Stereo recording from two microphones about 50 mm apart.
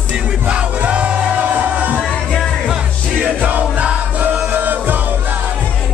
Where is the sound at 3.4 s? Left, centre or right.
Right.